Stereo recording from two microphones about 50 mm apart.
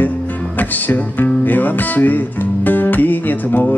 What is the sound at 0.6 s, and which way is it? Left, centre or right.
Music, left.